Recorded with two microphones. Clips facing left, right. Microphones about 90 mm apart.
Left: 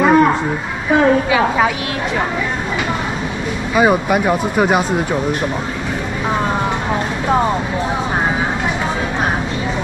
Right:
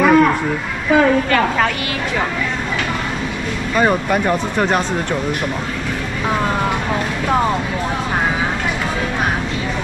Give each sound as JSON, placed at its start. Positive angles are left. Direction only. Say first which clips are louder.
{"t": 0.0, "sound": "a sound", "louder": "left 1 dB", "side_deg": 20}
{"t": 0.9, "sound": "speech", "louder": "left 1 dB", "side_deg": 10}
{"t": 3.7, "sound": "speech", "louder": "left 2 dB", "side_deg": 10}